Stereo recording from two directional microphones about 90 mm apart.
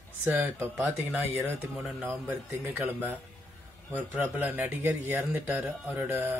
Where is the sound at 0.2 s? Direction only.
20° right (ahead or behind).